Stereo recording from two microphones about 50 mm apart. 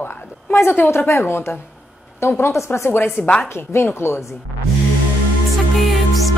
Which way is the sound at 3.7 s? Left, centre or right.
Left.